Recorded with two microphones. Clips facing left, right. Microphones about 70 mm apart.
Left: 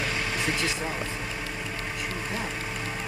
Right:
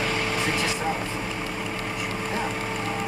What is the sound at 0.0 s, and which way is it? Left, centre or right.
Vehicle, right.